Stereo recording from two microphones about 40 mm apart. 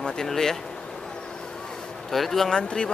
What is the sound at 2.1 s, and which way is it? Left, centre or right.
Speech, centre.